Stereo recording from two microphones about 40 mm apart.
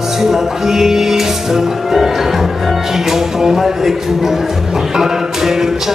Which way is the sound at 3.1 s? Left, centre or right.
Centre.